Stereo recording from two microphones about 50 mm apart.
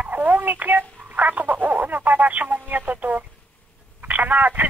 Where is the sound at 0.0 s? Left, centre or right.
Right.